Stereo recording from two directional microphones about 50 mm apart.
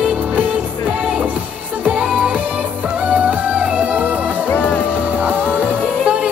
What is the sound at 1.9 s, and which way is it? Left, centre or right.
Music, right.